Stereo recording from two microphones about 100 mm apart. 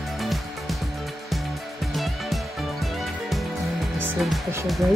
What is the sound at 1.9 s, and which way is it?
Music, centre (ahead or behind).